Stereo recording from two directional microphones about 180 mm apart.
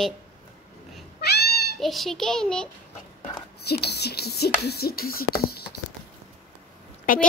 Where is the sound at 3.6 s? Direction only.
65° left (ahead or behind).